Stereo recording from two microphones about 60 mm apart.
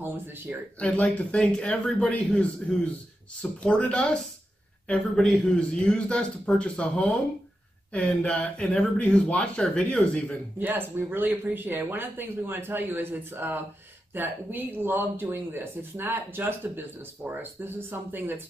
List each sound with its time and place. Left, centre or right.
0.0 s speech: right
0.7 s a man's voice: left
10.6 s speech: right